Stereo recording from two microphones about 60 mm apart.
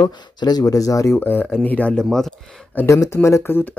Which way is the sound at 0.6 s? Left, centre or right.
Left.